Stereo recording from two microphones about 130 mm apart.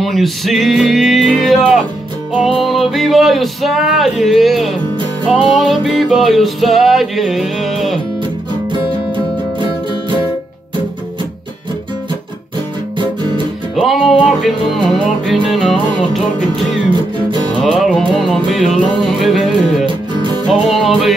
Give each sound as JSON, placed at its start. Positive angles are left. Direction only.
{"t": 0.0, "sound": "music", "side_deg": 0}
{"t": 9.1, "sound": "music", "side_deg": -40}
{"t": 13.7, "sound": "music", "side_deg": 0}
{"t": 17.6, "sound": "music", "side_deg": 0}
{"t": 19.9, "sound": "music", "side_deg": -40}
{"t": 20.4, "sound": "music", "side_deg": 0}